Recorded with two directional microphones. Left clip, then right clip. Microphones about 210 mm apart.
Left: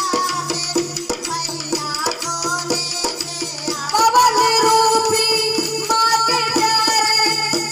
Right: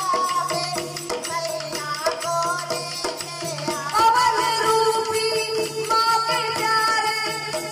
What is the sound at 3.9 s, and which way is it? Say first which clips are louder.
Music: left 4 dB; 50° left (ahead or behind).